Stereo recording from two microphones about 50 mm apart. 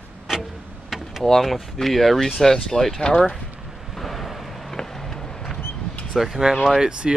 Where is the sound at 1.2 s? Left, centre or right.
Centre.